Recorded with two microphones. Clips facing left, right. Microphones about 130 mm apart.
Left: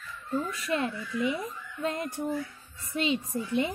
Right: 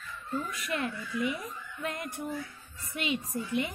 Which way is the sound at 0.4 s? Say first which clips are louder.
Left 4 dB; 30° left (ahead or behind).